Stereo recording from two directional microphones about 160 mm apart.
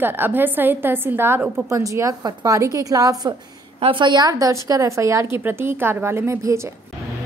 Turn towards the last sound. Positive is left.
turn(degrees=-20)  # may be behind; listen again after turning